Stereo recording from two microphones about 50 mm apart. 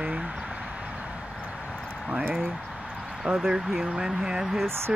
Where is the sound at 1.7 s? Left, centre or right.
Centre.